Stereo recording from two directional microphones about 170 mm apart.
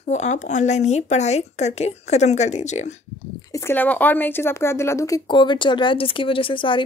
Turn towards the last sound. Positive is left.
turn(degrees=30)  # may be behind; listen again after turning